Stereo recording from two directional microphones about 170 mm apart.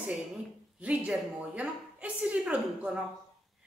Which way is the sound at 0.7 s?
5° right (ahead or behind).